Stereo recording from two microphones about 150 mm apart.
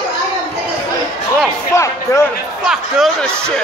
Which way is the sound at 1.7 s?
20° left (ahead or behind).